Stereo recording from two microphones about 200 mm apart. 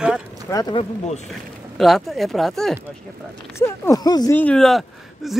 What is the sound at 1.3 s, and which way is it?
Speech, centre (ahead or behind).